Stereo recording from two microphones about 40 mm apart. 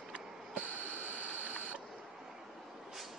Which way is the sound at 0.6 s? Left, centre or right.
Right.